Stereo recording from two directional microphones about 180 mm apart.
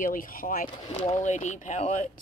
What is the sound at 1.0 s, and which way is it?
Speech, 40° left (ahead or behind).